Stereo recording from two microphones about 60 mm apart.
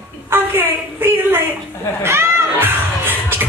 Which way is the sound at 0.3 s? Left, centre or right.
Right.